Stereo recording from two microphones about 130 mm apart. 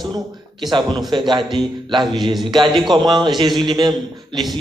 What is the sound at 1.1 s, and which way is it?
A man's voice, 35° right (ahead or behind).